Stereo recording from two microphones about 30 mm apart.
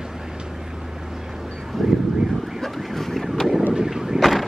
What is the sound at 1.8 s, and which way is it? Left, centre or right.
Vehicle, centre.